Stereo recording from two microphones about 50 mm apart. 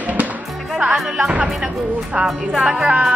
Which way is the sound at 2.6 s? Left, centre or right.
Centre.